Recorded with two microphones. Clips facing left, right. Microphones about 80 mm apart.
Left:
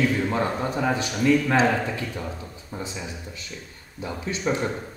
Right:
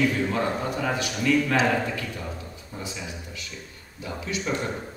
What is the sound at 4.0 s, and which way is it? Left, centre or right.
Speech, left.